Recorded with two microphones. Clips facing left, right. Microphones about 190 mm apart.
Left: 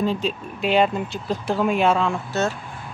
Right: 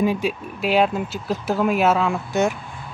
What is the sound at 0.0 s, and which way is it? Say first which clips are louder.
Speech: right 2 dB; 10° right (ahead or behind).